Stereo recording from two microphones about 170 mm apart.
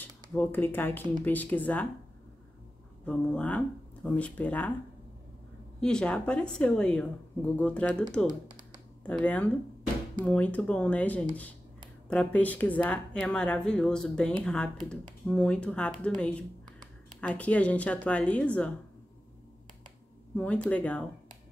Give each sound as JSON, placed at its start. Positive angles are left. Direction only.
{"t": 0.0, "sound": "speech", "side_deg": 10}
{"t": 3.1, "sound": "speech", "side_deg": 5}
{"t": 5.8, "sound": "speech", "side_deg": 5}
{"t": 8.3, "sound": "typing", "side_deg": -25}
{"t": 9.0, "sound": "speech", "side_deg": 5}
{"t": 20.3, "sound": "speech", "side_deg": 10}